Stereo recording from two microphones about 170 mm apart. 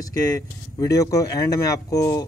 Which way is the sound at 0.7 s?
20° left (ahead or behind).